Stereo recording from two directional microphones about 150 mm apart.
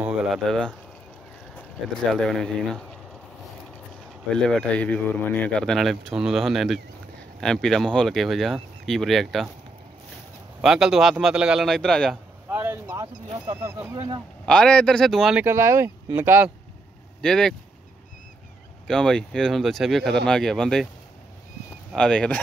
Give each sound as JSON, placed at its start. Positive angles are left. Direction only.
{"t": 0.0, "sound": "a sound", "side_deg": 0}
{"t": 2.2, "sound": "speech", "side_deg": 0}
{"t": 4.3, "sound": "speech", "side_deg": 5}
{"t": 10.6, "sound": "speech", "side_deg": 0}
{"t": 12.4, "sound": "vehicle", "side_deg": -15}
{"t": 13.6, "sound": "speech", "side_deg": -15}
{"t": 13.9, "sound": "speech", "side_deg": -25}
{"t": 14.4, "sound": "speech", "side_deg": 5}
{"t": 15.4, "sound": "speech", "side_deg": -20}
{"t": 17.2, "sound": "speech", "side_deg": 5}
{"t": 18.9, "sound": "speech", "side_deg": 5}
{"t": 21.9, "sound": "speech", "side_deg": 5}